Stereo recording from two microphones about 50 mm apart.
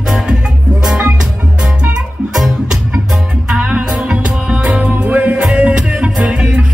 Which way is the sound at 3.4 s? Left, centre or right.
Right.